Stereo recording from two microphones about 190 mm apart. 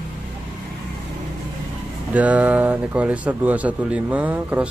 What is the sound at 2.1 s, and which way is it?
Speech, 10° right (ahead or behind).